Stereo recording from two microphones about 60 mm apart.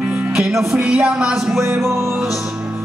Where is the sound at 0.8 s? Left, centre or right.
Centre.